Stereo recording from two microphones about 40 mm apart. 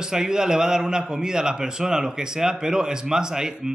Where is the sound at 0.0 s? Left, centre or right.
Centre.